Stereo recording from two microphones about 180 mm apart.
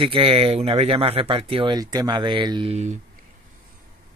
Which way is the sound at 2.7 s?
40° right (ahead or behind).